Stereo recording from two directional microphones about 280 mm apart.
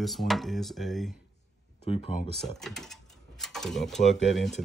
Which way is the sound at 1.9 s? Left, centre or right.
Left.